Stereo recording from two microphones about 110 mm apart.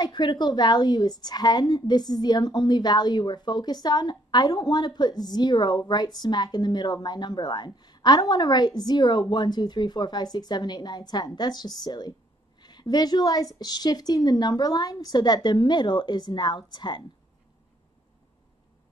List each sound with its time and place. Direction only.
0.0 s a woman's voice: 40° left (ahead or behind)